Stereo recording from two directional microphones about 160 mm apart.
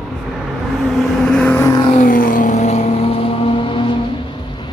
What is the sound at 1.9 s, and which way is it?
Vehicle, 55° left (ahead or behind).